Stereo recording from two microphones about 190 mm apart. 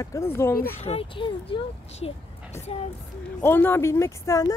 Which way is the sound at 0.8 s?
30° left (ahead or behind).